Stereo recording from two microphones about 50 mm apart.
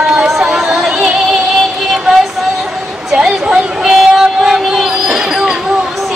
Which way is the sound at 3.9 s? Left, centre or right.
Centre.